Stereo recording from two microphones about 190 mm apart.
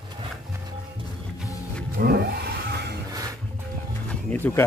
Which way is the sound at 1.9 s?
55° right (ahead or behind).